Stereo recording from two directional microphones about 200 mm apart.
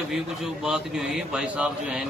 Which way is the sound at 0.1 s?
Centre (ahead or behind).